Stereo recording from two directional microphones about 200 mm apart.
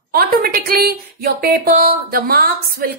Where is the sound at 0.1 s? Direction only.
45° right (ahead or behind).